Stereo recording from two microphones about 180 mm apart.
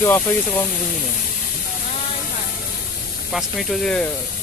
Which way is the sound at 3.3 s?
Centre (ahead or behind).